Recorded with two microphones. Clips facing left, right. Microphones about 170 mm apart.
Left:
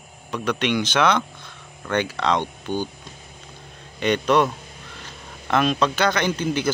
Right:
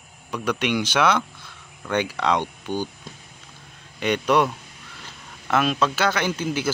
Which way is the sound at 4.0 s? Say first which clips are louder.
Left 1 dB; 10° right (ahead or behind).